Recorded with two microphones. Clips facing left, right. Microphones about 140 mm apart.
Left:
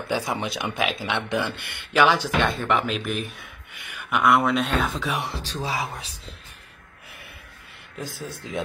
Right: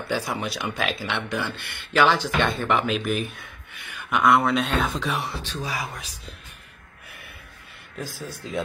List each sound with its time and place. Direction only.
0.1 s speech: 20° left (ahead or behind)
2.4 s speech: centre (ahead or behind)
3.8 s speech: 10° left (ahead or behind)
5.4 s speech: 35° left (ahead or behind)
8.4 s speech: 20° left (ahead or behind)